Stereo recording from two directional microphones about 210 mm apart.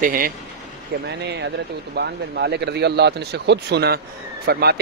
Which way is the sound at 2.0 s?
50° right (ahead or behind).